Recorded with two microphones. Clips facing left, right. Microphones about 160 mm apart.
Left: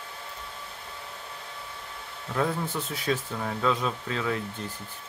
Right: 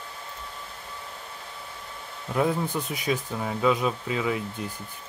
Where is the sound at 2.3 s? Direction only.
15° right (ahead or behind).